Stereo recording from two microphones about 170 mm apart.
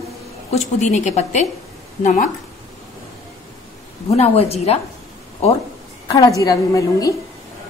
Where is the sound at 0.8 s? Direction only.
40° left (ahead or behind).